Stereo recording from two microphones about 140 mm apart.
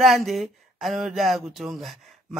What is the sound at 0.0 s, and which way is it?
Speech, centre (ahead or behind).